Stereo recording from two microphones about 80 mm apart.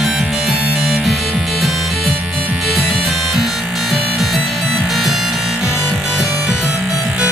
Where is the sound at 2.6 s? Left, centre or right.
Centre.